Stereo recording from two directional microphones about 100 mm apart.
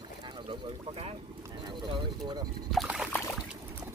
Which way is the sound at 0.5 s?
85° right.